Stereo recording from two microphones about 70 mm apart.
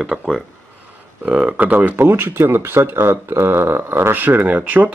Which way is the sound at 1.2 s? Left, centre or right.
Right.